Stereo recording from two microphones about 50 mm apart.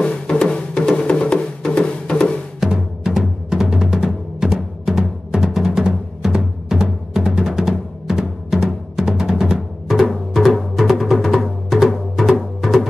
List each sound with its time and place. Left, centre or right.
0.0 s music: centre
2.6 s music: centre